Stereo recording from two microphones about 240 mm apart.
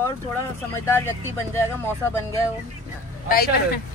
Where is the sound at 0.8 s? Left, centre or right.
Centre.